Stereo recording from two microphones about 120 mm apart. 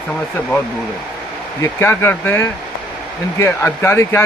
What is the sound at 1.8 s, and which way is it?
Speech, 20° left (ahead or behind).